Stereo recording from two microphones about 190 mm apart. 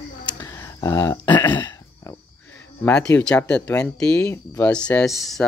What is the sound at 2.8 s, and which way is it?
Speech, 5° left (ahead or behind).